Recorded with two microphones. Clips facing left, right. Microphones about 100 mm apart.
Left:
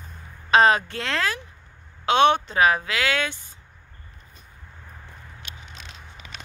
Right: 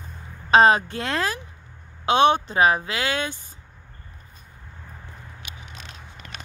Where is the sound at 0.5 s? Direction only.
25° right (ahead or behind).